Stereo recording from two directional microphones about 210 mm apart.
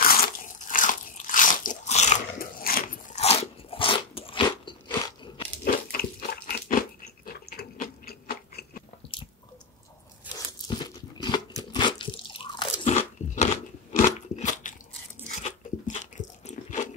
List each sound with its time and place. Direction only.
0.0 s crunch: 45° left (ahead or behind)
3.2 s crunch: 30° left (ahead or behind)
5.6 s crunch: 45° left (ahead or behind)
7.3 s a sound: 45° left (ahead or behind)
9.1 s squish: 25° left (ahead or behind)
10.3 s crunch: 20° left (ahead or behind)
13.9 s biting: 35° left (ahead or behind)
15.2 s crunch: 35° left (ahead or behind)